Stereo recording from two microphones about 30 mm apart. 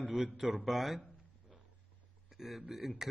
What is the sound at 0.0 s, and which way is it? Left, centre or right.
A man's voice, centre.